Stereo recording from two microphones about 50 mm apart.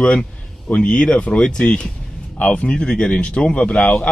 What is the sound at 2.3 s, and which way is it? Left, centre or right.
Speech, left.